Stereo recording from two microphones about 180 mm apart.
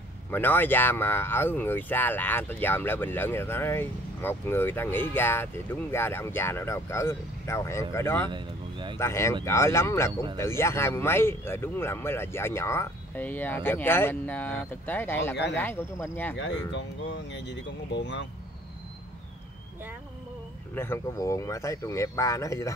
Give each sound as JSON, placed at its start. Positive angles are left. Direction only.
{"t": 0.3, "sound": "speech", "side_deg": 10}
{"t": 8.3, "sound": "speech", "side_deg": -25}
{"t": 8.9, "sound": "speech", "side_deg": 15}
{"t": 16.3, "sound": "speech", "side_deg": 85}
{"t": 20.7, "sound": "speech", "side_deg": 15}